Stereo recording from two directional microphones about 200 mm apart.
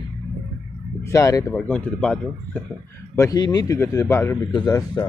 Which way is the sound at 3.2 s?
20° left (ahead or behind).